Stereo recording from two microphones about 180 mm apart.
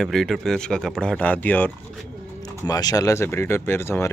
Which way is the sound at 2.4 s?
20° left (ahead or behind).